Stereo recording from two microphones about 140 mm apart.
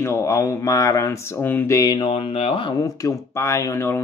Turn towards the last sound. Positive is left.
turn(degrees=20)  # may be behind; listen again after turning